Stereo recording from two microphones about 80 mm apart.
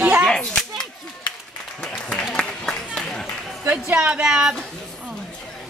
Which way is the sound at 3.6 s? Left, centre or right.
Right.